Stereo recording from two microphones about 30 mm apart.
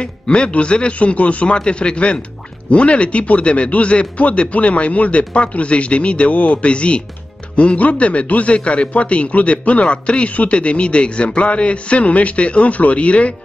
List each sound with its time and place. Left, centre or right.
0.0 s speech: left
0.9 s speech: left
1.6 s speech: left
6.6 s speech: left
7.5 s speech: left
10.5 s speech: left